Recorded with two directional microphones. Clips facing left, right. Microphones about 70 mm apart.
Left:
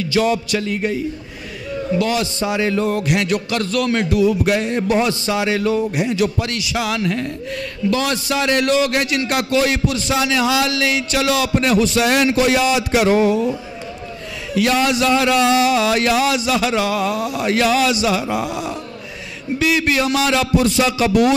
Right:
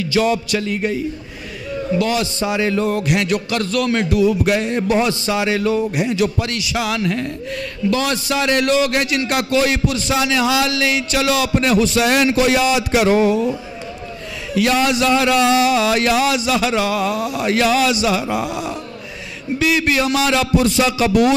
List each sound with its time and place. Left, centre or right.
0.1 s music: centre
2.0 s music: centre
7.9 s a man's voice: centre
14.5 s music: centre
19.6 s a man's voice: centre